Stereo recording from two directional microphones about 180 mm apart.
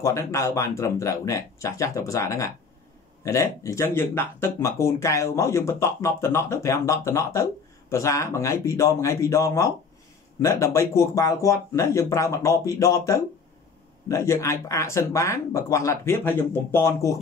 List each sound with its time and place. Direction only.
0.0 s speech: 15° left (ahead or behind)